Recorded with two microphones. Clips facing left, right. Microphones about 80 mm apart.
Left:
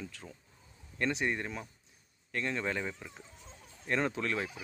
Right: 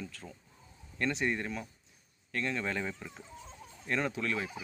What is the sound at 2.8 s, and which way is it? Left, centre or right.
Speech, centre.